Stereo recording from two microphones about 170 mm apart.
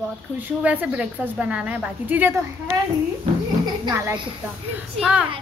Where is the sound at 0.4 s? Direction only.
10° right (ahead or behind).